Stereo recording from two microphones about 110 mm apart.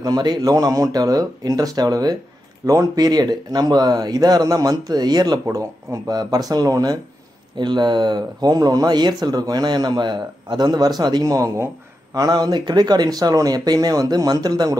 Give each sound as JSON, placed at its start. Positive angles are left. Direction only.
{"t": 0.0, "sound": "speech", "side_deg": -40}